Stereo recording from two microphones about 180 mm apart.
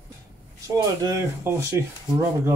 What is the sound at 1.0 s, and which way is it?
Speech, 15° right (ahead or behind).